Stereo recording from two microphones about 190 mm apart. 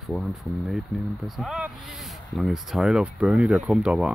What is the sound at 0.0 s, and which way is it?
Speech, centre (ahead or behind).